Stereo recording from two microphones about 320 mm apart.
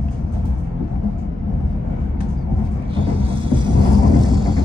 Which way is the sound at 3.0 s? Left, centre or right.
Centre.